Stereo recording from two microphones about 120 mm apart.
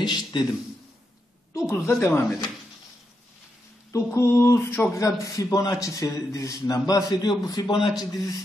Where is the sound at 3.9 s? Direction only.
25° left (ahead or behind).